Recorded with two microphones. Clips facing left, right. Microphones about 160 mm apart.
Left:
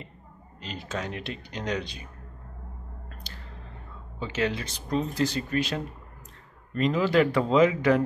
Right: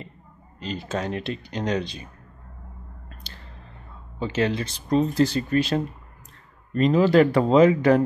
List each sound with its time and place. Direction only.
0.6 s speech: 35° right (ahead or behind)
4.2 s speech: 30° right (ahead or behind)